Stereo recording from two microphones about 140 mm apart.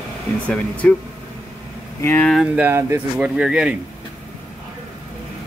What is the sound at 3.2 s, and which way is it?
Speech, 5° right (ahead or behind).